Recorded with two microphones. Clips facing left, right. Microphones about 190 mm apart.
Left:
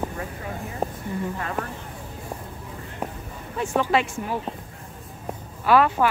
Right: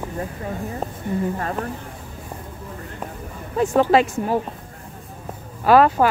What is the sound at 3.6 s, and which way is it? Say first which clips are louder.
Speech: right 6 dB; 40° right (ahead or behind).